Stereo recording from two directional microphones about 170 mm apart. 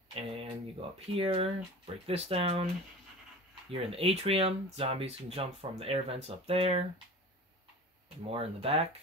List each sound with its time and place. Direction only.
0.1 s a sound: 35° right (ahead or behind)
0.9 s speech: 35° right (ahead or behind)
3.7 s speech: 35° right (ahead or behind)
8.3 s speech: 35° right (ahead or behind)